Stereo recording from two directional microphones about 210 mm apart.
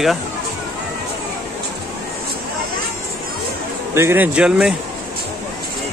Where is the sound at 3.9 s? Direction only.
10° right (ahead or behind).